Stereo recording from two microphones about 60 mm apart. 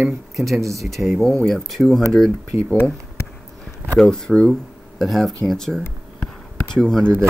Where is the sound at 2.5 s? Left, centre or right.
Right.